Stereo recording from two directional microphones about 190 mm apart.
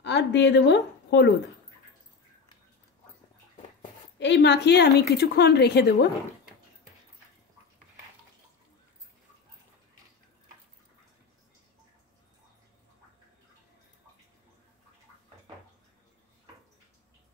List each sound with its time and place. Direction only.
0.0 s a woman's voice: 65° left (ahead or behind)
4.2 s a woman's voice: 65° left (ahead or behind)